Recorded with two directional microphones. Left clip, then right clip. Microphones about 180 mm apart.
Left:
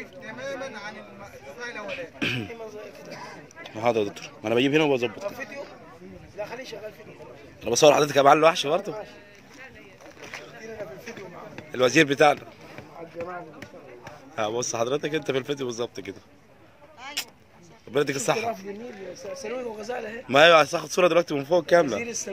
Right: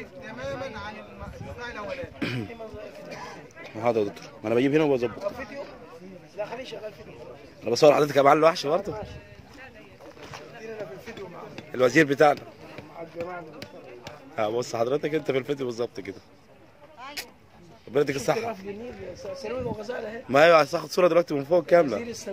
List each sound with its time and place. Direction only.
0.2 s speech: 10° left (ahead or behind)
1.9 s speech: centre (ahead or behind)
5.2 s speech: 20° left (ahead or behind)
6.3 s a man's voice: 5° left (ahead or behind)
11.7 s speech: 5° right (ahead or behind)
14.3 s speech: 5° right (ahead or behind)
17.9 s speech: centre (ahead or behind)
19.4 s speech: 15° left (ahead or behind)
20.2 s speech: 5° right (ahead or behind)
22.0 s speech: 30° left (ahead or behind)